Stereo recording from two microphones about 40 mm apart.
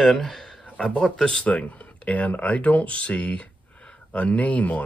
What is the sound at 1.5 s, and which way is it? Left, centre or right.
Speech, left.